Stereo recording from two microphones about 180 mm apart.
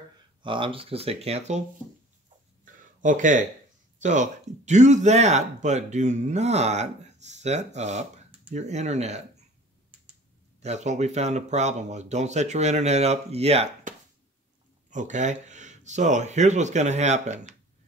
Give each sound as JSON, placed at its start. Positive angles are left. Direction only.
{"t": 0.4, "sound": "speech", "side_deg": -30}
{"t": 2.6, "sound": "a sound", "side_deg": -45}
{"t": 4.0, "sound": "speech", "side_deg": -40}
{"t": 10.6, "sound": "speech", "side_deg": -40}